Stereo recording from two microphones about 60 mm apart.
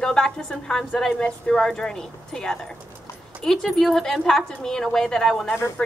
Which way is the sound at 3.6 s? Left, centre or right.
Centre.